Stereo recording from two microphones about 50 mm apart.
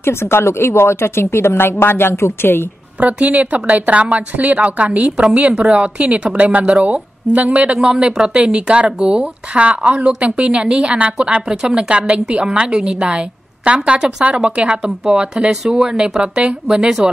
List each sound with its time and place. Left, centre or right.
0.0 s a woman's voice: left
3.0 s speech: right
7.8 s speech: centre
16.2 s speech: right